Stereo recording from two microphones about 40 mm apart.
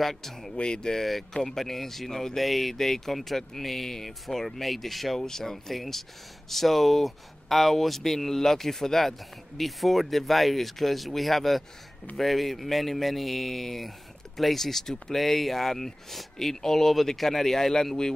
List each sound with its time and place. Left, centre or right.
0.0 s speech: centre
0.6 s speech: left